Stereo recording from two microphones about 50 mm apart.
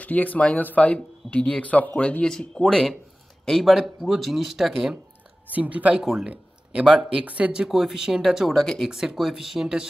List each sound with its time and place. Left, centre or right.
0.0 s speech: left
2.2 s speech: centre
5.5 s speech: right
6.2 s a sound: right
6.9 s speech: centre
7.2 s speech: right
7.6 s speech: centre
8.5 s speech: centre